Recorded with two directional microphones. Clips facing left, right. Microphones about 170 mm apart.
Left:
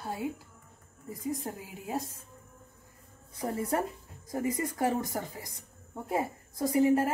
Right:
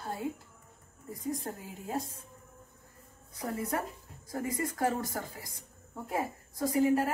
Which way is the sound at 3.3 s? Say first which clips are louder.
Left 3 dB; 30° left (ahead or behind).